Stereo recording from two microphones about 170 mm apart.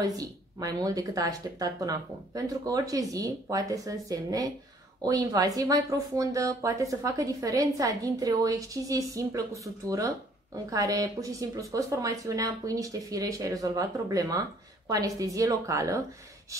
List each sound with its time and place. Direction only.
0.0 s speech: 20° right (ahead or behind)